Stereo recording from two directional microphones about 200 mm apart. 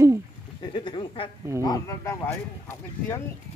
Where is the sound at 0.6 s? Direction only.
25° left (ahead or behind).